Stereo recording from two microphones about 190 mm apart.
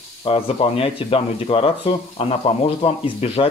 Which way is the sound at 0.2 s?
30° left (ahead or behind).